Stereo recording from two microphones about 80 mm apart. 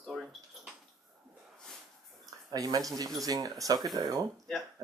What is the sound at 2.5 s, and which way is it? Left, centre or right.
Speech, right.